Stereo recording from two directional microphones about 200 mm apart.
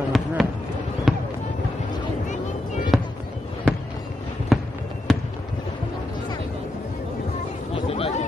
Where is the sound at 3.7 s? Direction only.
5° left (ahead or behind).